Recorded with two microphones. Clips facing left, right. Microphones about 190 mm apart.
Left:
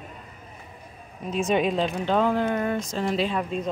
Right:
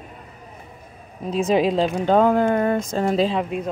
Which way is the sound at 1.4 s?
90° right.